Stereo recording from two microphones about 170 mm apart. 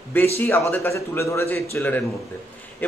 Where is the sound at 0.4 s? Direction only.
10° left (ahead or behind).